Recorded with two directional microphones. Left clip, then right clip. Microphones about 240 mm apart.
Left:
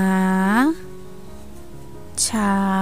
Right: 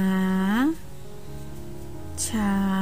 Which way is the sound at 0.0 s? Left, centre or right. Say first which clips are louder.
Left 6 dB; left.